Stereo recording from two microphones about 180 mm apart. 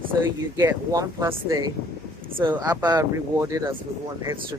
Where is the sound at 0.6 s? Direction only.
15° right (ahead or behind).